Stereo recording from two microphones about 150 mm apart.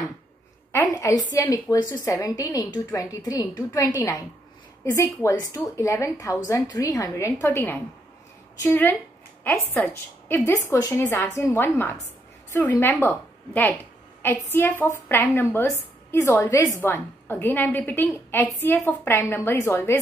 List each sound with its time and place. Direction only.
0.7 s a woman's voice: 20° left (ahead or behind)